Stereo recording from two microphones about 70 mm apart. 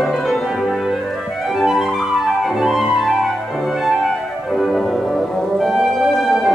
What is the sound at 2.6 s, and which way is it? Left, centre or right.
Music, centre.